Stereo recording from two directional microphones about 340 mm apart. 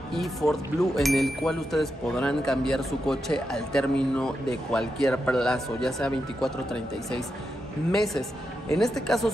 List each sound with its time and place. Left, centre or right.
0.1 s speech: centre